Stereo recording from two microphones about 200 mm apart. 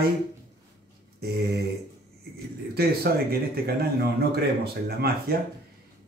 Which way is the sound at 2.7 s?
50° right (ahead or behind).